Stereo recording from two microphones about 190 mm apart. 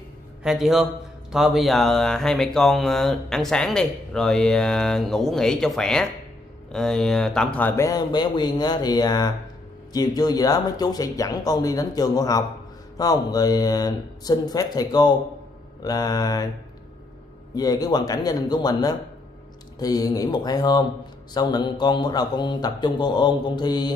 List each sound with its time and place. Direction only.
0.4 s speech: centre (ahead or behind); by 16.4 s 20° left (ahead or behind)
17.6 s speech: 20° left (ahead or behind)